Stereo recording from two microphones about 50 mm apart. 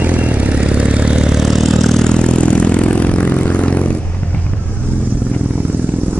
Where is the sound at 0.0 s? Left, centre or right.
Right.